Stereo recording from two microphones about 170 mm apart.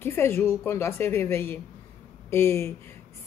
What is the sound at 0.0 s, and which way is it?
A woman's voice, 15° left (ahead or behind).